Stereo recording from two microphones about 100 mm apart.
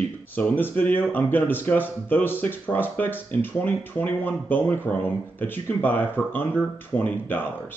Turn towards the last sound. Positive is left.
turn(degrees=20)  # may be behind; listen again after turning